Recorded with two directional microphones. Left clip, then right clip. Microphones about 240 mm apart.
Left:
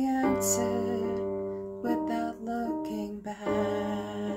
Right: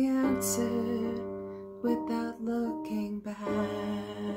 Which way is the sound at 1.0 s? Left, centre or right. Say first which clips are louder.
Left 4 dB; left.